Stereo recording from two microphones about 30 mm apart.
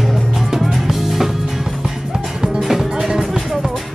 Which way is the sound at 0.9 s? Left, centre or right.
Centre.